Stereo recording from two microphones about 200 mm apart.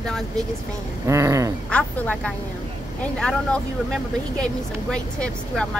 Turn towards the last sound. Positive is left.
turn(degrees=5)  # may be behind; listen again after turning